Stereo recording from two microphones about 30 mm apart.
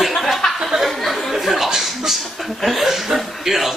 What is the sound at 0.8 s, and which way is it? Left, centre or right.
A man's voice, centre.